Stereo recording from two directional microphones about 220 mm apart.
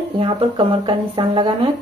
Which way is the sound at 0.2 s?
20° right (ahead or behind).